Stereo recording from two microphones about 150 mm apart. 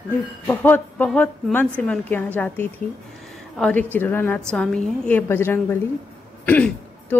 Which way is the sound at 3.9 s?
15° left (ahead or behind).